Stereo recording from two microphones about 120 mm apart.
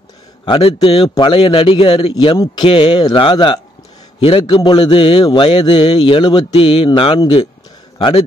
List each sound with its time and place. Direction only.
0.5 s a man's voice: 55° left (ahead or behind)